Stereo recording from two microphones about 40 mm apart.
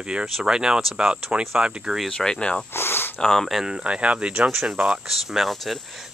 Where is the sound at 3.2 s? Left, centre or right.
Centre.